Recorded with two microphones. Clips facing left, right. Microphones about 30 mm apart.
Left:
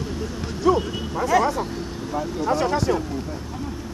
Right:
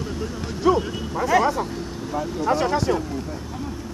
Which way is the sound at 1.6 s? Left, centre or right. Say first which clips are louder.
Even; centre.